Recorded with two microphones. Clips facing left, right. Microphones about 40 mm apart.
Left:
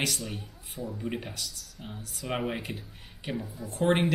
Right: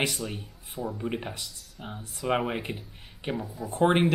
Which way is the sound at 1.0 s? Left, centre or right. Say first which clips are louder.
Right 2 dB; centre.